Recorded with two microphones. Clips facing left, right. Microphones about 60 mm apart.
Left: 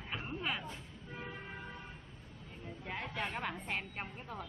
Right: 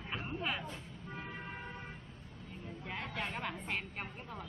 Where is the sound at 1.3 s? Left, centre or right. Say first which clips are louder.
Right 1 dB; right.